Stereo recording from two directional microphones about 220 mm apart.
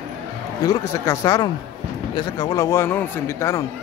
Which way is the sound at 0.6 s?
15° left (ahead or behind).